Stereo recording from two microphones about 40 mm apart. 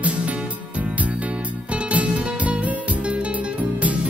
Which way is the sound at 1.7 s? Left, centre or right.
Right.